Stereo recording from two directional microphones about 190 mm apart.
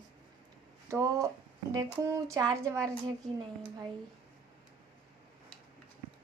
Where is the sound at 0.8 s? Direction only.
15° right (ahead or behind).